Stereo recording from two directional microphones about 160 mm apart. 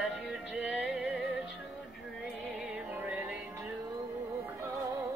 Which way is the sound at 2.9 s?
10° right (ahead or behind).